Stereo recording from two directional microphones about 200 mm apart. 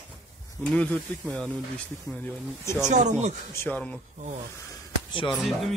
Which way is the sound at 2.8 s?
35° right (ahead or behind).